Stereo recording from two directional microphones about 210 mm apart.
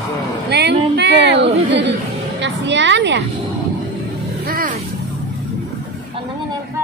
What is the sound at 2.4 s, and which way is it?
Speech, 60° right (ahead or behind).